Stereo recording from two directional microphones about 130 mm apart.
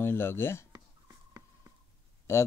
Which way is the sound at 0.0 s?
20° left (ahead or behind).